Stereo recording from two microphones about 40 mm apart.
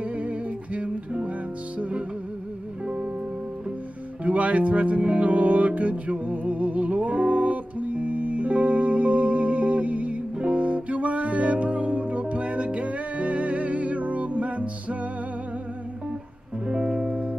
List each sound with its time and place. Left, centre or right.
0.0 s music: right
4.2 s music: right
16.6 s music: right